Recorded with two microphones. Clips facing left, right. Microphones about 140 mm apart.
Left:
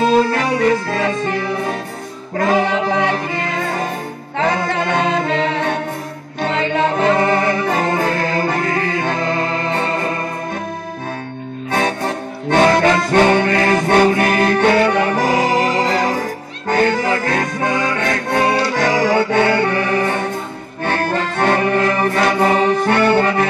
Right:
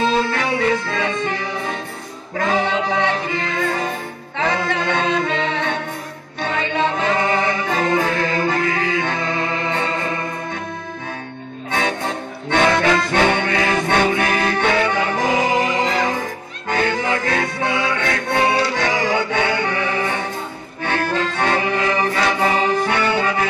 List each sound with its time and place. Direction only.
0.0 s music: 45° left (ahead or behind)
2.3 s music: 45° left (ahead or behind)
11.7 s music: 45° left (ahead or behind)